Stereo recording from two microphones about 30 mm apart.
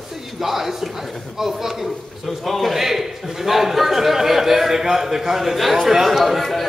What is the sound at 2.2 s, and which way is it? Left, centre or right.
A man's voice, centre.